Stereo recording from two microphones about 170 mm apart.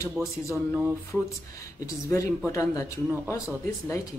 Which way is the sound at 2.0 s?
15° left (ahead or behind).